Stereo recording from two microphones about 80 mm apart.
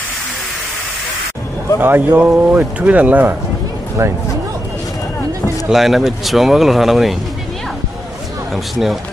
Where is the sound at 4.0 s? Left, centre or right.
Right.